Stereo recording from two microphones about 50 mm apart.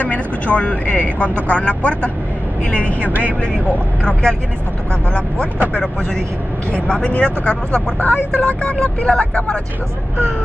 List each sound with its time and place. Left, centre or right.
0.0 s speech: left
3.1 s speech: right
4.0 s speech: centre
7.1 s speech: centre